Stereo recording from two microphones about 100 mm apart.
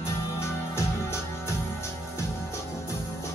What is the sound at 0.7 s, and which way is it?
Music, 30° left (ahead or behind).